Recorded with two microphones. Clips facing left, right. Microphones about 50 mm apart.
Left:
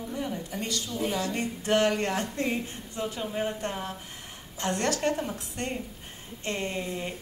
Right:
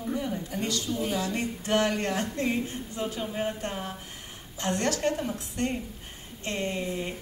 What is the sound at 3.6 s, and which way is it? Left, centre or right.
A woman's voice, left.